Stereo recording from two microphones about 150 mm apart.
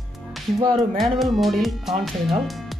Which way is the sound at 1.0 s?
Centre (ahead or behind).